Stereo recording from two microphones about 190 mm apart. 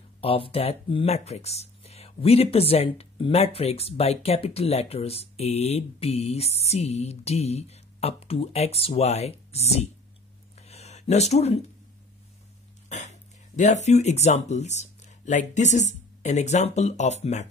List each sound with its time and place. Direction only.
0.5 s speech: 30° left (ahead or behind)
10.6 s a sound: 35° left (ahead or behind)
13.6 s speech: 35° left (ahead or behind)